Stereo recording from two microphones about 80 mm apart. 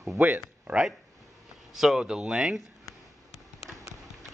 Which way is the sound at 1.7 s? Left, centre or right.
Centre.